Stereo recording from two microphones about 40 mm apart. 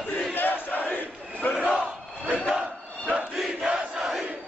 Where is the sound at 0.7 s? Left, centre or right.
Left.